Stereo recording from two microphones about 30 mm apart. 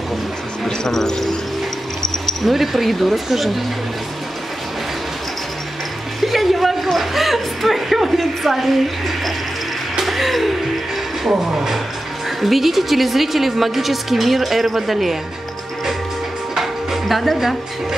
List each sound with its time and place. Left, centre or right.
0.7 s a sound: centre
2.4 s a woman's voice: centre
6.2 s a sound: centre
11.2 s speech: centre
12.4 s a woman's voice: centre
16.5 s music: centre